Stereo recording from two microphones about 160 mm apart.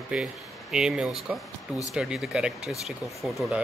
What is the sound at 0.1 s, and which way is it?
Speech, 5° right (ahead or behind).